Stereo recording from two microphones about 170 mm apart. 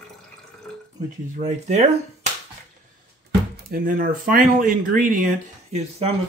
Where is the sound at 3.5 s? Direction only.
55° right (ahead or behind); by 6.1 s 40° right (ahead or behind).